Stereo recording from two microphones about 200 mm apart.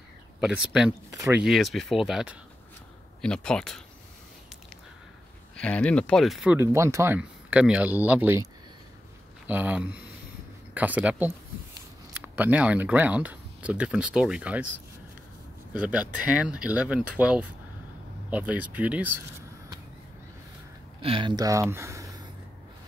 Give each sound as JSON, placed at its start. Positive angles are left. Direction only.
{"t": 0.4, "sound": "speech", "side_deg": -5}
{"t": 1.4, "sound": "speech", "side_deg": 0}
{"t": 5.6, "sound": "speech", "side_deg": 5}
{"t": 6.6, "sound": "speech", "side_deg": -15}
{"t": 9.5, "sound": "speech", "side_deg": -10}
{"t": 15.7, "sound": "speech", "side_deg": -5}
{"t": 21.0, "sound": "speech", "side_deg": -25}